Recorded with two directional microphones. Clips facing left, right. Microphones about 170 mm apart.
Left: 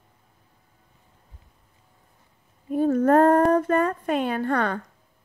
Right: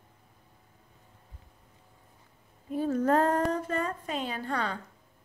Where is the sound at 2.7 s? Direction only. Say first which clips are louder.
Left 7 dB; 55° left (ahead or behind).